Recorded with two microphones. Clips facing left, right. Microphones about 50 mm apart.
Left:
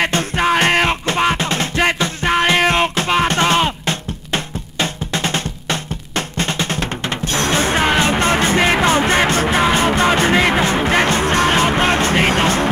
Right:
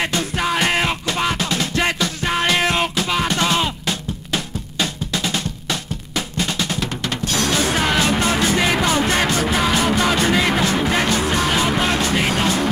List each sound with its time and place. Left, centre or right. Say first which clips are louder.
0.4 s music: left 5 dB; left
3.3 s drum: left 4 dB; left
7.3 s music: left 3 dB; left
8.2 s music: left 3 dB; left